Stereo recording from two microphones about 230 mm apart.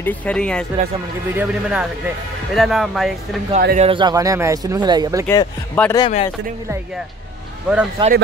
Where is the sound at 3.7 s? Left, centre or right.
Right.